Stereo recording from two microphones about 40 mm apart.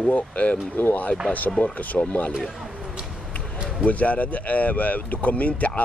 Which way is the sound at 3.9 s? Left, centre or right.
Left.